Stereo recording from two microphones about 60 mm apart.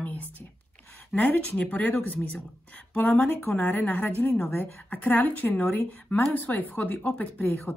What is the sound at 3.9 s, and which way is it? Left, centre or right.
Speech, left.